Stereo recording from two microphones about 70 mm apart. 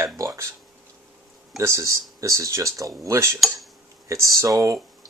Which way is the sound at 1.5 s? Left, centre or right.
Right.